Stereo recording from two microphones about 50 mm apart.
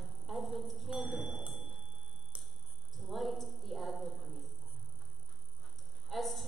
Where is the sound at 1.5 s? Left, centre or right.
Centre.